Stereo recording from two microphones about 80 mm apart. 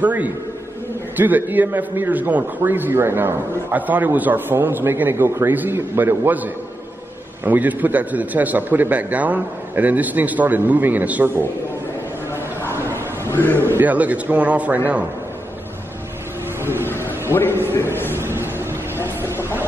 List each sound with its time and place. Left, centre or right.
0.0 s a man's voice: centre
13.2 s a sound: left
13.6 s a man's voice: right
17.3 s a man's voice: left
18.1 s vehicle: right